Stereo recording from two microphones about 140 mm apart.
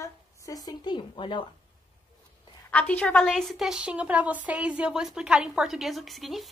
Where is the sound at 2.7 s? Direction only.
10° left (ahead or behind).